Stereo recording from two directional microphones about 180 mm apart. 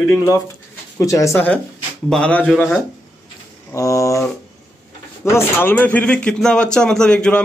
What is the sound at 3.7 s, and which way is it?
Speech, 15° left (ahead or behind).